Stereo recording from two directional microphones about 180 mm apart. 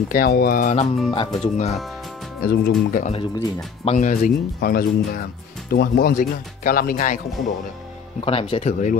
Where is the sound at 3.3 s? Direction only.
15° left (ahead or behind).